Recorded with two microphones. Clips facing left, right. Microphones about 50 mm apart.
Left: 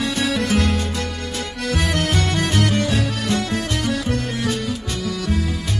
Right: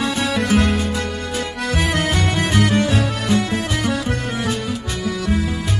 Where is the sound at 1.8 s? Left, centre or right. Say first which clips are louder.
Right 2 dB; centre.